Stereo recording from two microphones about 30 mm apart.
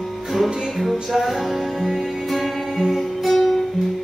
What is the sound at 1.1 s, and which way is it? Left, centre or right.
Music, centre.